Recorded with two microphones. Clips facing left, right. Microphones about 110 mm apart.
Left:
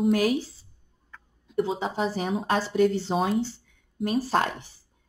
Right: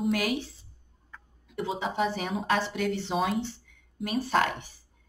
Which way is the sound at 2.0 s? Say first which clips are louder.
Left 2 dB; 35° left (ahead or behind).